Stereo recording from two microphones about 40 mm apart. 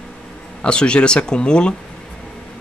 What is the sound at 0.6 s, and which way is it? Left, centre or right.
Speech, left.